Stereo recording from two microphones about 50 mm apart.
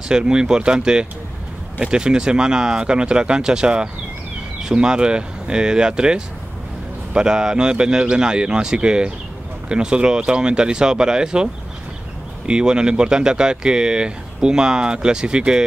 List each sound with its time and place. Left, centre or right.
0.1 s speech: centre
12.4 s speech: centre